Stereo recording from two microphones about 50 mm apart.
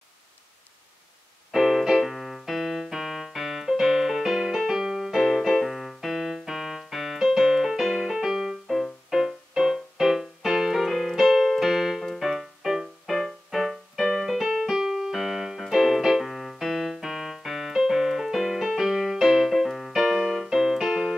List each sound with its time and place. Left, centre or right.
1.5 s keyboard: centre
7.8 s music: centre